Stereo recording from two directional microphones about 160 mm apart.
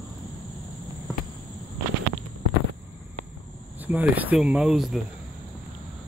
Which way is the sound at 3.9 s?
10° right (ahead or behind).